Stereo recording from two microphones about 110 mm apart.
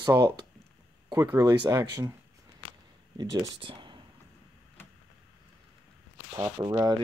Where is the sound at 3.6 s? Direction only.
45° right (ahead or behind).